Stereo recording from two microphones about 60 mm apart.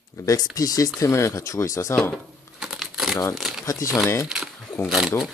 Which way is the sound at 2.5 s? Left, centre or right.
Centre.